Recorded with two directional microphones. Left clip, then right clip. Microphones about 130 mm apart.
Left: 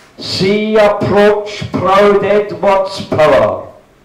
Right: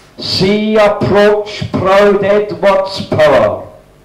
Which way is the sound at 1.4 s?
50° right (ahead or behind).